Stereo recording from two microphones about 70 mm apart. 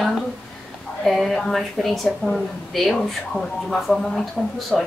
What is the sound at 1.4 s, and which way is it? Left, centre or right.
A woman's voice, centre.